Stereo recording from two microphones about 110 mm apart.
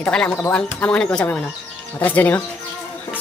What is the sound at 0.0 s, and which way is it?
Speech, 10° left (ahead or behind).